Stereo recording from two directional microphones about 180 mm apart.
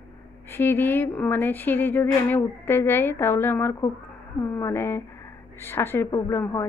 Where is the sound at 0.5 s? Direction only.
10° left (ahead or behind).